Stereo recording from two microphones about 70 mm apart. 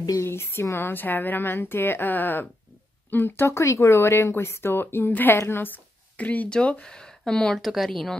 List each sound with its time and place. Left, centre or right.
0.2 s speech: left; by 7.6 s centre
7.6 s speech: centre